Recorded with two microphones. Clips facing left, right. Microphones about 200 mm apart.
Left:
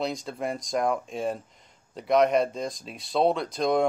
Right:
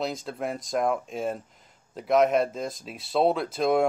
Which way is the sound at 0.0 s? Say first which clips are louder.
Even; centre (ahead or behind).